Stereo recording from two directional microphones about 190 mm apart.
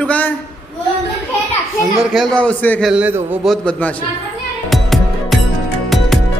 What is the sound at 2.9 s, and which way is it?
Speech, 10° right (ahead or behind).